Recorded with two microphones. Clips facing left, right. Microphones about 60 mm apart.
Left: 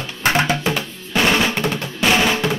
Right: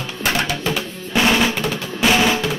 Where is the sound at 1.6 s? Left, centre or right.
Centre.